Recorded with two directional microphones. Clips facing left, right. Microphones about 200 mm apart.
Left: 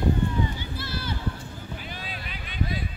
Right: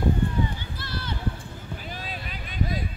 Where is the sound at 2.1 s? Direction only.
45° right (ahead or behind).